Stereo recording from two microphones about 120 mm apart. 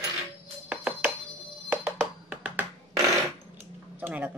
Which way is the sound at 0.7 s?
10° right (ahead or behind).